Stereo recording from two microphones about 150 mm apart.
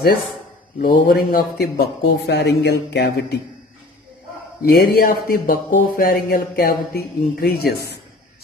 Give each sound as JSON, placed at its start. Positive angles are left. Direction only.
{"t": 0.7, "sound": "a man's voice", "side_deg": 70}
{"t": 4.6, "sound": "speech", "side_deg": 85}